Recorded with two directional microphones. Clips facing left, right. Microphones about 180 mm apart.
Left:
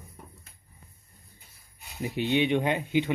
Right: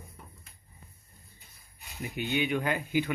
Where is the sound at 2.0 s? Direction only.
30° left (ahead or behind).